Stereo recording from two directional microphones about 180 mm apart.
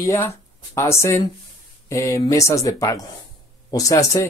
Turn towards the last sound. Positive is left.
turn(degrees=20)  # may be behind; listen again after turning